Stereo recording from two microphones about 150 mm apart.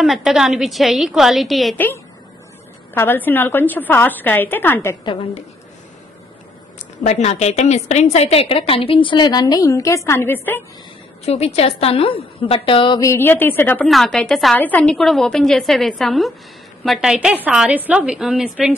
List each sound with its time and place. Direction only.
0.0 s a woman's voice: centre (ahead or behind)
2.9 s a woman's voice: 15° left (ahead or behind)
5.0 s a woman's voice: 35° left (ahead or behind)
7.0 s a woman's voice: 50° left (ahead or behind); by 10.6 s 15° left (ahead or behind)
11.2 s a woman's voice: 45° left (ahead or behind)
13.0 s a woman's voice: 15° left (ahead or behind)
13.8 s a woman's voice: centre (ahead or behind)